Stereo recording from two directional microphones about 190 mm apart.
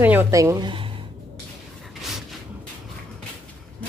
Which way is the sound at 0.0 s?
10° right (ahead or behind).